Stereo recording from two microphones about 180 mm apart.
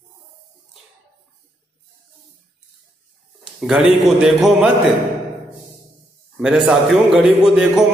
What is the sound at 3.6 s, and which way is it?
A man's voice, 5° right (ahead or behind).